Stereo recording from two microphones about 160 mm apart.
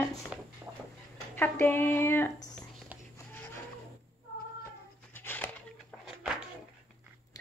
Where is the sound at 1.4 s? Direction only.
15° left (ahead or behind).